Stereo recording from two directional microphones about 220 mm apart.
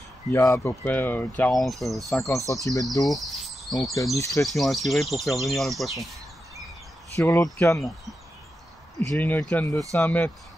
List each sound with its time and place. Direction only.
0.3 s speech: 15° left (ahead or behind)
2.5 s speech: 15° left (ahead or behind)
3.1 s insect: centre (ahead or behind)
4.2 s speech: 15° left (ahead or behind)
4.5 s speech: centre (ahead or behind)
7.2 s speech: 15° left (ahead or behind)
9.1 s speech: 5° left (ahead or behind)